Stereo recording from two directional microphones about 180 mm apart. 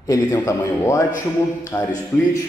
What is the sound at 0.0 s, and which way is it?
A man's voice, 15° left (ahead or behind).